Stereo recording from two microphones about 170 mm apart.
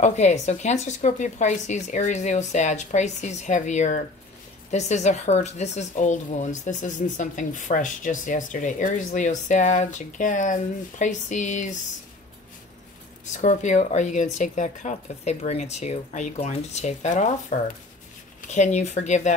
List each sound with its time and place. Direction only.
0.0 s speech: 45° left (ahead or behind)
13.3 s speech: 45° left (ahead or behind)